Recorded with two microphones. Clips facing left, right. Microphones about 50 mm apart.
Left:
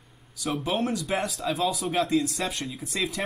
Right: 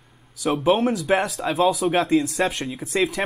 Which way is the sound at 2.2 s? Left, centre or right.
Right.